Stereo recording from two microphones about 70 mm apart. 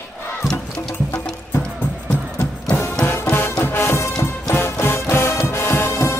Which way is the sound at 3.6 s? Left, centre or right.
Left.